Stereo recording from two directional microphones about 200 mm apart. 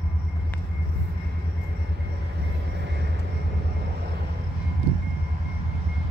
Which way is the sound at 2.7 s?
60° right (ahead or behind).